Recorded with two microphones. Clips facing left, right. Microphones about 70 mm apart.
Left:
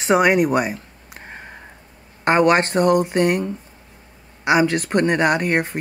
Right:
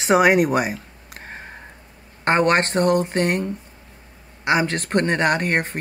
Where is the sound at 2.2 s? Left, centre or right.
Centre.